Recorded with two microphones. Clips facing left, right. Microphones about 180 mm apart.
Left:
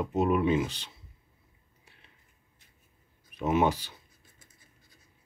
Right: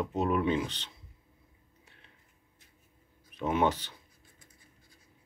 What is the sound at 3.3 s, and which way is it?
Speech, 10° left (ahead or behind).